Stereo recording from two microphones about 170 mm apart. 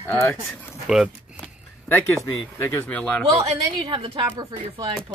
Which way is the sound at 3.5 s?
30° right (ahead or behind).